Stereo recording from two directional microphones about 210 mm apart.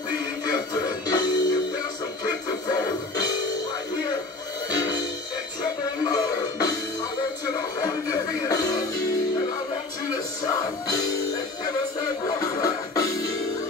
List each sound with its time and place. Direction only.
0.5 s music: 20° left (ahead or behind)
4.6 s music: 20° left (ahead or behind)
6.0 s music: 15° left (ahead or behind)
7.8 s music: 15° left (ahead or behind)
10.4 s music: 15° left (ahead or behind)
12.3 s music: 15° left (ahead or behind)